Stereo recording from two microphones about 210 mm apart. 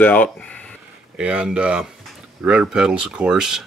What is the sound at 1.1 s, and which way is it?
Speech, 5° right (ahead or behind).